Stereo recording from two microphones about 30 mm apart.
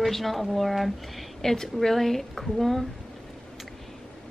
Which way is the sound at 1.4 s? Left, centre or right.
Centre.